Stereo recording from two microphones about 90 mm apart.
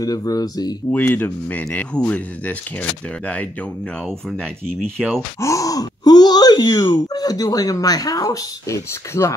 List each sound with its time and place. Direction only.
0.0 s speech: 45° left (ahead or behind)
0.9 s speech: 20° left (ahead or behind)
5.0 s speech: 5° left (ahead or behind)
5.4 s speech: 40° left (ahead or behind)